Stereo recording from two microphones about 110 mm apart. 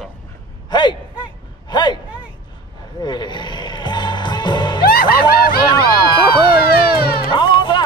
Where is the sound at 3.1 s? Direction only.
45° left (ahead or behind).